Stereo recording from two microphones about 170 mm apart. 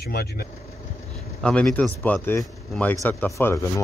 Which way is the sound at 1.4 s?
5° left (ahead or behind).